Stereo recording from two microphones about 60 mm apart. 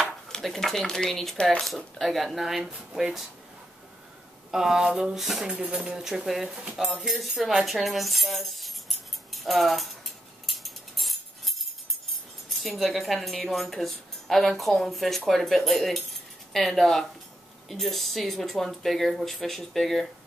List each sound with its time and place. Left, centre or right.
0.3 s speech: centre
2.0 s speech: centre
4.5 s speech: centre
5.5 s speech: right
5.9 s speech: centre
6.6 s speech: centre
7.0 s tambourine: centre
12.4 s speech: centre